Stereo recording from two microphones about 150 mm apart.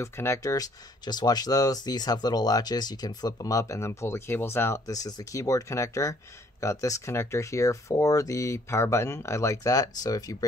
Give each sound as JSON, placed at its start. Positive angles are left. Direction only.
{"t": 0.0, "sound": "speech", "side_deg": 20}